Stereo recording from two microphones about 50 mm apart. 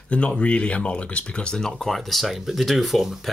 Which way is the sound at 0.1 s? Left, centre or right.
Left.